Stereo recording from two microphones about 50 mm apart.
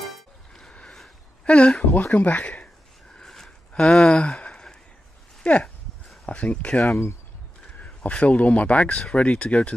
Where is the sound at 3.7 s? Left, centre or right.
Left.